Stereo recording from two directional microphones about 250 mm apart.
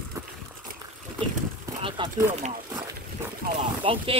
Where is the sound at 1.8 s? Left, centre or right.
Centre.